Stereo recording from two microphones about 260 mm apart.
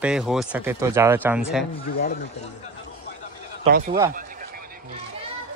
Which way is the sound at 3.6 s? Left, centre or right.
Right.